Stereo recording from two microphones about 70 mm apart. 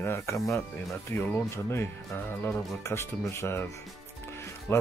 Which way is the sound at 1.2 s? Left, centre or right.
Left.